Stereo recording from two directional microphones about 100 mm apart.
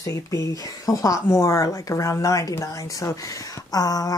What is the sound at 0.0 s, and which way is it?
Speech, 35° left (ahead or behind).